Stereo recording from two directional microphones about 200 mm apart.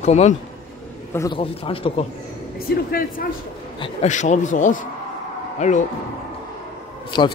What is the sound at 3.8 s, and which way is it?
Speech, 35° left (ahead or behind).